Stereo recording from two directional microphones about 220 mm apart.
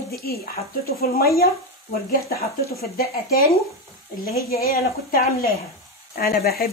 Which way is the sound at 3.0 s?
45° left (ahead or behind).